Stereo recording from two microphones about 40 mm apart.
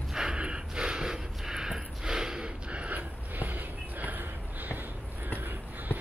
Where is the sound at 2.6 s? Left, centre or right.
Right.